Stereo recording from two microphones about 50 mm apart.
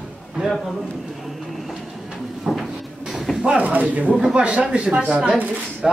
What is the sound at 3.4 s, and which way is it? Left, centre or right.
Speech, right.